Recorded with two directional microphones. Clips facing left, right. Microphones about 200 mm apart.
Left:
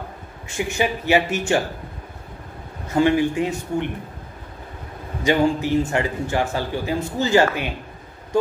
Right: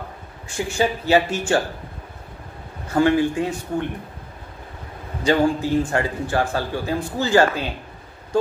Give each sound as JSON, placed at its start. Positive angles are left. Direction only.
{"t": 0.5, "sound": "a man's voice", "side_deg": 15}
{"t": 2.9, "sound": "a man's voice", "side_deg": 20}
{"t": 5.2, "sound": "a man's voice", "side_deg": 15}